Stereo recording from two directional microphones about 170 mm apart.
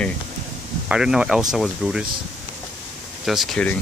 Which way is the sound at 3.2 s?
Centre (ahead or behind).